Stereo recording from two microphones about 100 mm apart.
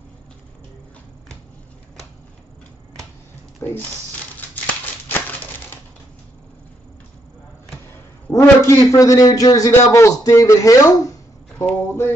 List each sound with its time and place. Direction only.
3.6 s speech: 25° left (ahead or behind)
8.3 s a man's voice: 35° left (ahead or behind)
11.6 s a sound: 15° left (ahead or behind)